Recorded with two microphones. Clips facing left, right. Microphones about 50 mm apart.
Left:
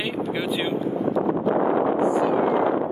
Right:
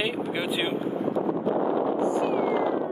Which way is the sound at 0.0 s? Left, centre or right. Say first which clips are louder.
Left 1 dB; centre.